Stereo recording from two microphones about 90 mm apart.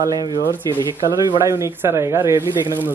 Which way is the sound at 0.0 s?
45° right (ahead or behind).